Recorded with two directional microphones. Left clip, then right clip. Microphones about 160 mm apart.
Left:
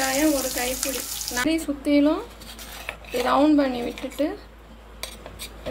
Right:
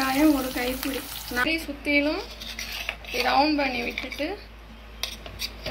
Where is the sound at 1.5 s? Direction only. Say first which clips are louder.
Left 2 dB; 90° left.